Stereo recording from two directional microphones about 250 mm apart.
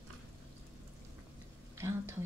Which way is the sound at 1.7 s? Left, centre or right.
Centre.